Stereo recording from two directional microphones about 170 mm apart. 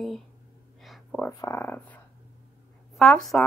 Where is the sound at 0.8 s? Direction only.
Centre (ahead or behind).